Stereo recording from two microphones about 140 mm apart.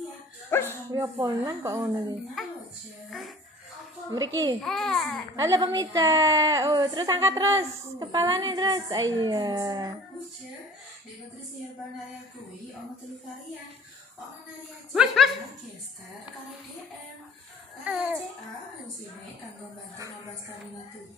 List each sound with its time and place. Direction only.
0.5 s dog: 15° left (ahead or behind)
0.9 s a woman's voice: 20° right (ahead or behind)
2.4 s a sound: centre (ahead or behind)
4.1 s a woman's voice: 25° right (ahead or behind)
4.6 s a child's voice: 5° left (ahead or behind)
5.3 s a woman's voice: 25° right (ahead or behind)
14.9 s a child's voice: centre (ahead or behind)
17.8 s speech: 10° right (ahead or behind)